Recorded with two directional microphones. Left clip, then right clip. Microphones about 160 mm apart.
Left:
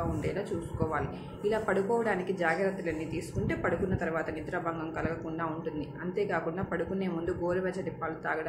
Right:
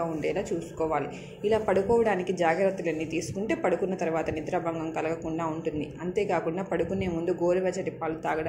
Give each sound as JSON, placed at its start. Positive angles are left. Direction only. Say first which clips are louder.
{"t": 0.7, "sound": "a woman's voice", "louder": "right 5 dB", "side_deg": -15}